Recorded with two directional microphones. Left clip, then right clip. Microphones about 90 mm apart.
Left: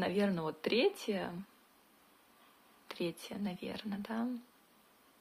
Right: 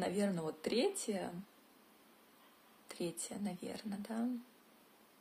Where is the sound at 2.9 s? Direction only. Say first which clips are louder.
Left 3 dB; 25° right (ahead or behind).